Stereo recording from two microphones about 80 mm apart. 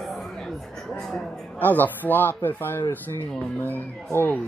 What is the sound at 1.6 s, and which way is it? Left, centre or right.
Speech, left.